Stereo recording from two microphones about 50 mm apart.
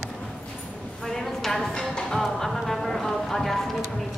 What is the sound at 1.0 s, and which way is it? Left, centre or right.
Speech, centre.